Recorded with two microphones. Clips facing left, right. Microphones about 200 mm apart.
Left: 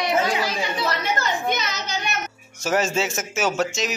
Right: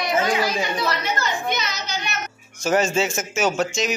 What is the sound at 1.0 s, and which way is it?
A woman's voice, 50° left (ahead or behind).